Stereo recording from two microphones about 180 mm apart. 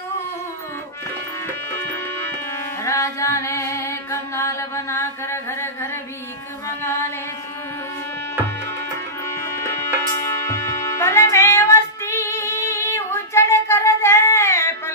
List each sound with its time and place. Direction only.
2.8 s music: 15° left (ahead or behind)
10.4 s music: 15° left (ahead or behind)